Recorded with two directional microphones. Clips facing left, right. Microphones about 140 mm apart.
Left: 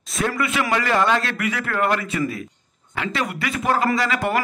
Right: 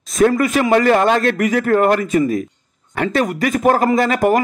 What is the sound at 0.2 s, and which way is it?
A man's voice, 45° right (ahead or behind).